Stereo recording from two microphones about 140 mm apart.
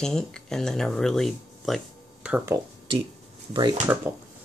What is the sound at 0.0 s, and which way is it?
Speech, 5° left (ahead or behind).